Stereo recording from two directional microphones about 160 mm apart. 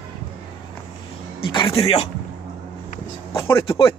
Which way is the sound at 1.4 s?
30° left (ahead or behind).